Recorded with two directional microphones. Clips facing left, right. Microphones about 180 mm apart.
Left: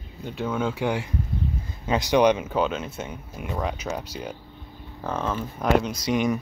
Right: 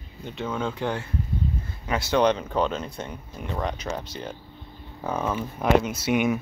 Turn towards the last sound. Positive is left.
turn(degrees=-5)  # may be behind; listen again after turning